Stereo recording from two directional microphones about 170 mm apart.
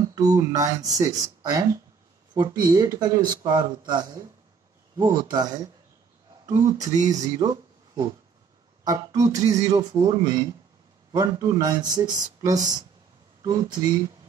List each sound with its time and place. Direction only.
0.3 s speech: 20° right (ahead or behind)
6.7 s speech: 20° right (ahead or behind)